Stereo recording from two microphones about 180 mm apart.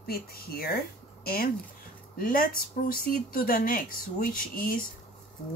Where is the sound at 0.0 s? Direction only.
55° left (ahead or behind).